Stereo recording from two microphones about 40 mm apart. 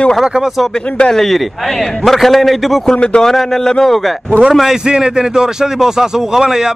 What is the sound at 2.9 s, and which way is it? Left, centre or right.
Speech, left.